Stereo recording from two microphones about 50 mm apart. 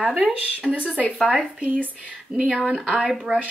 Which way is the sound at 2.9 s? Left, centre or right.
Centre.